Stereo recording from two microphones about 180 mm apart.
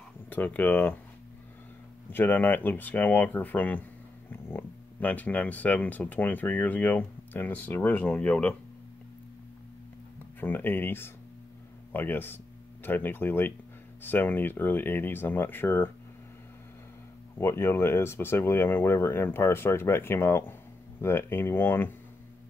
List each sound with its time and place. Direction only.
0.3 s speech: 10° left (ahead or behind)
2.0 s speech: 10° left (ahead or behind)
10.4 s speech: 10° left (ahead or behind)
17.4 s speech: 15° left (ahead or behind)